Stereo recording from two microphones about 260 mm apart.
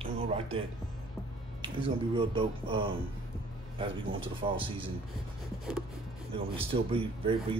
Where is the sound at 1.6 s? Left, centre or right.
Centre.